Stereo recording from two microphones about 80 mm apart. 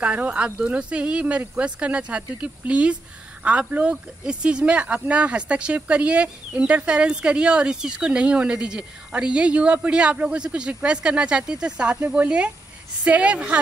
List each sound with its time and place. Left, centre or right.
0.0 s speech: centre